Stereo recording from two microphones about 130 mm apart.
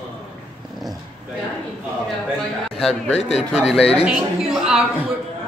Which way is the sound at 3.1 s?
55° left (ahead or behind).